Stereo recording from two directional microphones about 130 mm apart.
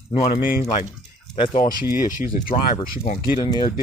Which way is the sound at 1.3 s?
40° left (ahead or behind).